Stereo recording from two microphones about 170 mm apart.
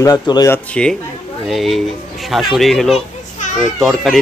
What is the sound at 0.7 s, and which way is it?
Speech, 5° left (ahead or behind).